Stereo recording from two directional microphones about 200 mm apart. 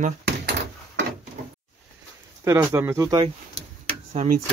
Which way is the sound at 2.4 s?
15° right (ahead or behind).